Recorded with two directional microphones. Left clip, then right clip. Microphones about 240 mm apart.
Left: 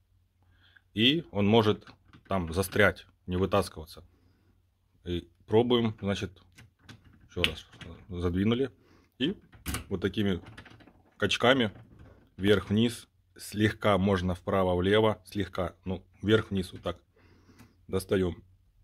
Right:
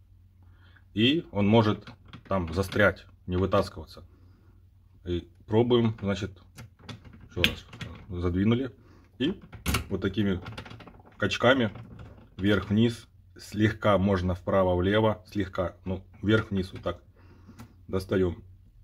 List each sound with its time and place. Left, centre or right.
0.9 s speech: left
5.0 s speech: left
7.3 s typing: left
8.1 s speech: left